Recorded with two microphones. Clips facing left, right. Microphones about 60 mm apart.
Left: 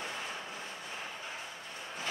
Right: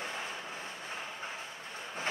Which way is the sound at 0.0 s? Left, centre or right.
Right.